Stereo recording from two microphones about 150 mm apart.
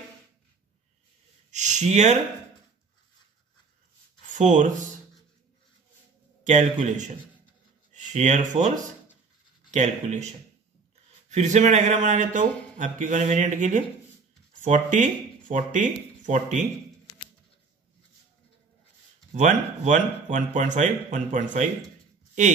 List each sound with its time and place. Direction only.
1.5 s speech: 55° right (ahead or behind)
4.3 s speech: 55° right (ahead or behind)
6.4 s a man's voice: 55° right (ahead or behind)
11.2 s a man's voice: 50° right (ahead or behind)
19.3 s a man's voice: 55° right (ahead or behind)